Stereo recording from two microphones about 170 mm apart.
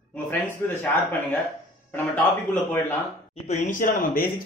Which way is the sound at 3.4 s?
45° left (ahead or behind).